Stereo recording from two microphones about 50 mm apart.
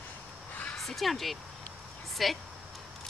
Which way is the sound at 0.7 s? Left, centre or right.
Centre.